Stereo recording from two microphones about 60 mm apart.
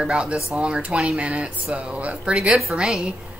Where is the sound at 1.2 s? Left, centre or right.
Centre.